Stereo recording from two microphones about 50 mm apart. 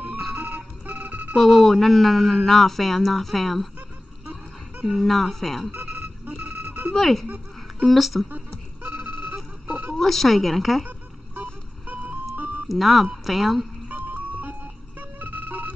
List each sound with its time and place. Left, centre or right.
0.4 s a sound: right
1.3 s speech: centre
4.8 s speech: centre
5.7 s a sound: right
7.0 s speech: centre
8.8 s telephone: right
9.9 s speech: centre
12.6 s speech: centre
13.8 s a sound: right